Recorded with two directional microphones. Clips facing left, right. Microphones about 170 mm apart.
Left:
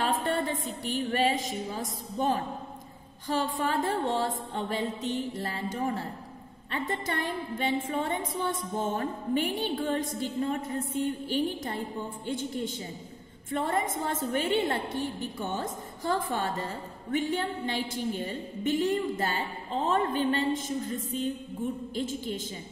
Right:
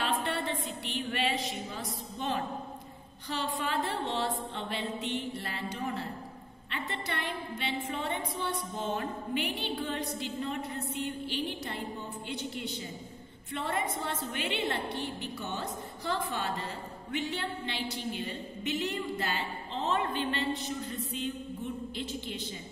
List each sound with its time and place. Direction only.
0.0 s a woman's voice: 45° left (ahead or behind)